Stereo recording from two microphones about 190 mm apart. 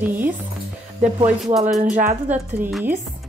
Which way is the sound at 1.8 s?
45° right (ahead or behind).